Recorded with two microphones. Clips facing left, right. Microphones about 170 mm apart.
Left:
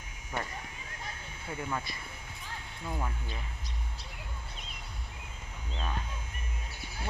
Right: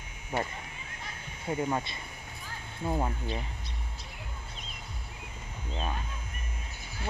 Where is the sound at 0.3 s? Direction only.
25° right (ahead or behind).